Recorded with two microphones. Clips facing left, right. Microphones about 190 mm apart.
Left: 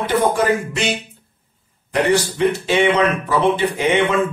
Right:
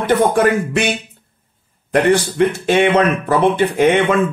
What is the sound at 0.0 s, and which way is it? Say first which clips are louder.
Speech: right 4 dB; 55° right (ahead or behind).